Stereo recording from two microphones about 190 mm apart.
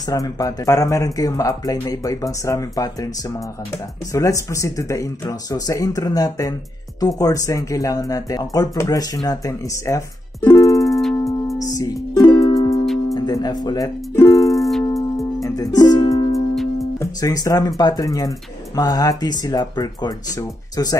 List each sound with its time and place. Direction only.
0.1 s speech: 20° left (ahead or behind)
4.1 s speech: 15° left (ahead or behind)
10.8 s music: centre (ahead or behind)
11.1 s music: 15° left (ahead or behind)
13.1 s speech: 20° left (ahead or behind)
14.5 s music: centre (ahead or behind)
14.9 s music: 15° left (ahead or behind)
17.0 s speech: 20° left (ahead or behind)